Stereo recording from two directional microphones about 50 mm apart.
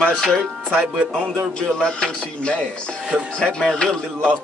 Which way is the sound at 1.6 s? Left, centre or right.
Centre.